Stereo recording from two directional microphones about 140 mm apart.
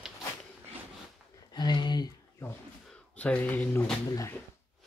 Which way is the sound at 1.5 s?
30° left (ahead or behind).